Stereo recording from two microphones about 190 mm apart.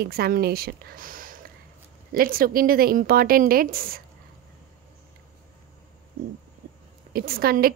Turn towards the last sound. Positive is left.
turn(degrees=-50)  # may be behind; listen again after turning